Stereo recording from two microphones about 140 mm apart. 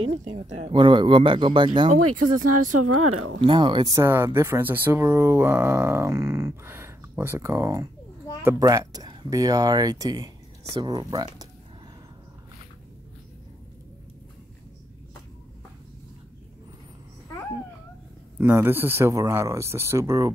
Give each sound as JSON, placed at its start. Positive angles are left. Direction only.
{"t": 0.0, "sound": "speech", "side_deg": -50}
{"t": 0.7, "sound": "speech", "side_deg": -35}
{"t": 1.9, "sound": "speech", "side_deg": -70}
{"t": 3.3, "sound": "speech", "side_deg": -35}
{"t": 18.4, "sound": "speech", "side_deg": -15}